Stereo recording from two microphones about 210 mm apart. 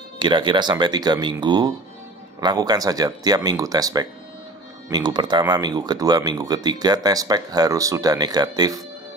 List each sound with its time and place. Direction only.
0.2 s speech: 25° right (ahead or behind)